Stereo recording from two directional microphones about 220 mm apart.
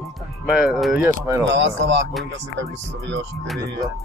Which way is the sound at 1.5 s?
55° right (ahead or behind).